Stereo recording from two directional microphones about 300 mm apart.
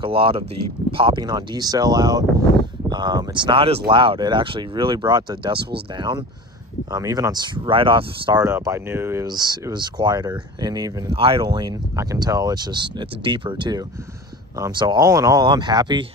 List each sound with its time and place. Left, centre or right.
0.0 s speech: centre